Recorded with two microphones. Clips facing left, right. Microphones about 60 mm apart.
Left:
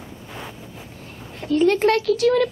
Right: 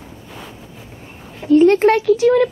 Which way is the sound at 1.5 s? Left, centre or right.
Right.